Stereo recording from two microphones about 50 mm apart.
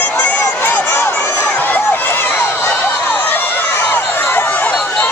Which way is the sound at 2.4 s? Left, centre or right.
Left.